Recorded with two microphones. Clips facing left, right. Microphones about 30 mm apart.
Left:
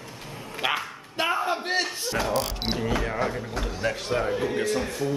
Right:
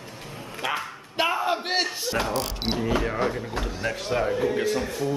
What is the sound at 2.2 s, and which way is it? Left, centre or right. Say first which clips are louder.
Speech: left 1 dB; centre.